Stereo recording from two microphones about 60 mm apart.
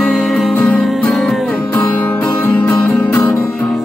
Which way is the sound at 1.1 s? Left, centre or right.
Centre.